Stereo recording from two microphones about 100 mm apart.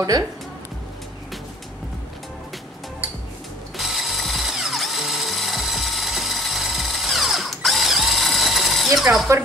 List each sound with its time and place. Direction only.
0.1 s speech: 35° right (ahead or behind)
3.7 s drill: centre (ahead or behind)